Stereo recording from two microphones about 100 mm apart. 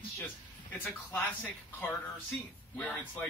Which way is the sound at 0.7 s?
15° left (ahead or behind).